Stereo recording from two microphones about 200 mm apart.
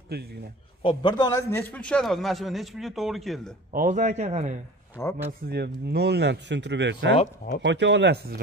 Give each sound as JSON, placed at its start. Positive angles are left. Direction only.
{"t": 0.1, "sound": "a man's voice", "side_deg": -50}
{"t": 0.8, "sound": "a man's voice", "side_deg": 20}
{"t": 3.7, "sound": "a man's voice", "side_deg": -35}
{"t": 5.0, "sound": "speech", "side_deg": 15}
{"t": 5.5, "sound": "speech", "side_deg": -55}